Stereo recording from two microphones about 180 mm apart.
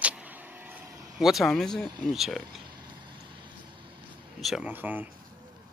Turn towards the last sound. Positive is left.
turn(degrees=-10)  # may be behind; listen again after turning